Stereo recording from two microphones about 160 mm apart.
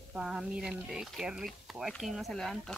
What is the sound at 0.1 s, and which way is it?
Speech, 5° right (ahead or behind).